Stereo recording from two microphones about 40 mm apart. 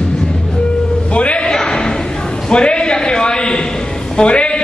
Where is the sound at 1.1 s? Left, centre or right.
Left.